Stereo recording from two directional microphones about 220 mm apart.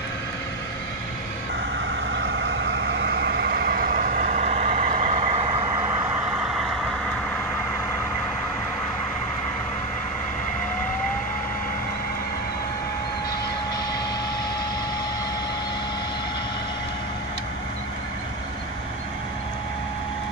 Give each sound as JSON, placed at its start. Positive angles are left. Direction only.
{"t": 2.1, "sound": "vehicle", "side_deg": -55}